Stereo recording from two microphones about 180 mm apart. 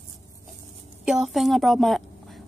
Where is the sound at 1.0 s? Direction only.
Centre (ahead or behind).